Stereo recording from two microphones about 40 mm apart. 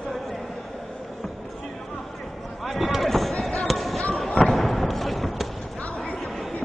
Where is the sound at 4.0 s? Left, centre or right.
Left.